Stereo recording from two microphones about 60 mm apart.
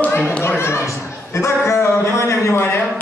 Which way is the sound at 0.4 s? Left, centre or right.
Left.